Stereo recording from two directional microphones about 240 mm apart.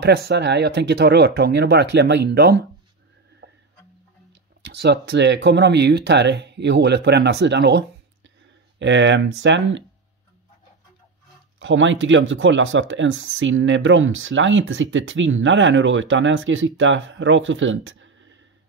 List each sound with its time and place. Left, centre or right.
0.0 s speech: right
3.4 s music: right
4.8 s speech: right
11.6 s speech: right